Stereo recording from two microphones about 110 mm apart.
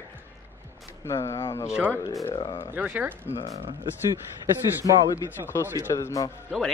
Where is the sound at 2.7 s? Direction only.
15° right (ahead or behind).